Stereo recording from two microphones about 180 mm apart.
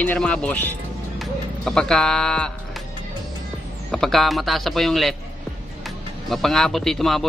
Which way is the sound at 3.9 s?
Centre (ahead or behind).